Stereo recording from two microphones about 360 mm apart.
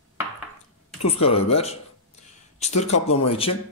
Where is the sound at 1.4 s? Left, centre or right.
Centre.